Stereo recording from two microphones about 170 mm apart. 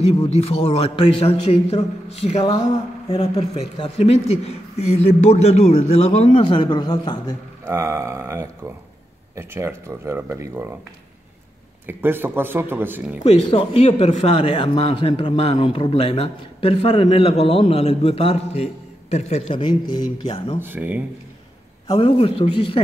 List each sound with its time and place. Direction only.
0.1 s speech: 35° left (ahead or behind)
3.2 s speech: 40° left (ahead or behind)
7.6 s speech: 15° right (ahead or behind)
11.8 s speech: 10° right (ahead or behind)
13.2 s speech: 35° left (ahead or behind)
20.6 s speech: 10° right (ahead or behind)
21.9 s speech: 35° left (ahead or behind)